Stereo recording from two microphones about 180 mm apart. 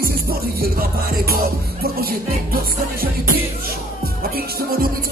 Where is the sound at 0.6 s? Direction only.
55° right (ahead or behind).